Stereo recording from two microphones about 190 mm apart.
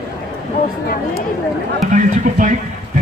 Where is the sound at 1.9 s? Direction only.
40° right (ahead or behind).